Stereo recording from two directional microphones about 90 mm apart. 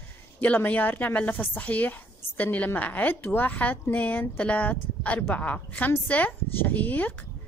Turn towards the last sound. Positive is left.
turn(degrees=20)  # may be behind; listen again after turning